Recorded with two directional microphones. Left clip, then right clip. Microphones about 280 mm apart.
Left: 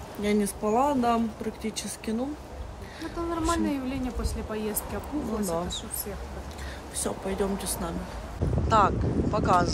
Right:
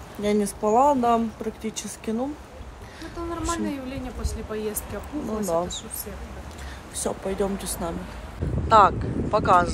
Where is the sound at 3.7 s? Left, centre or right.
Centre.